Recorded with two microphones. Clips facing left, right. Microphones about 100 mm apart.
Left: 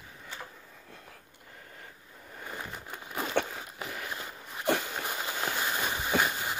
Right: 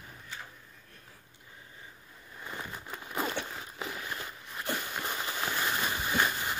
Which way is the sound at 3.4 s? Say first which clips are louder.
Left 8 dB; 55° left (ahead or behind).